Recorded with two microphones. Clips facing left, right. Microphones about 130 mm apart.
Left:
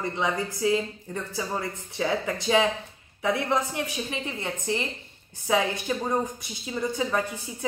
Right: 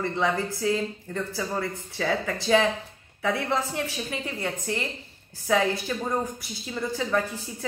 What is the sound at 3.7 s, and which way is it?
Speech, 20° left (ahead or behind).